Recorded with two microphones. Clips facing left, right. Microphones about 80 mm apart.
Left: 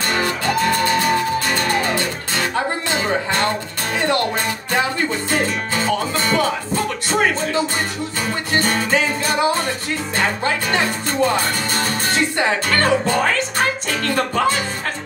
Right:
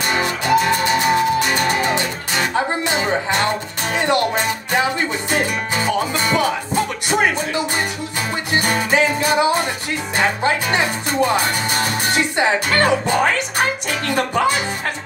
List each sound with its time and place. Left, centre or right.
0.1 s music: centre
6.1 s music: centre